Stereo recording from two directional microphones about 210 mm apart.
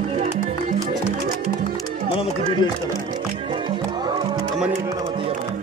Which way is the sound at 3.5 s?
20° right (ahead or behind).